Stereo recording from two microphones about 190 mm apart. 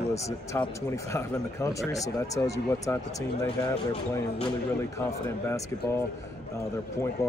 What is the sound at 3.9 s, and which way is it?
Speech, 30° left (ahead or behind).